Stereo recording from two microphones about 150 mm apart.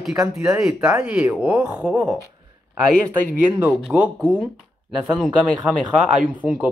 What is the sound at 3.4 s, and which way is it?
Speech, 15° right (ahead or behind).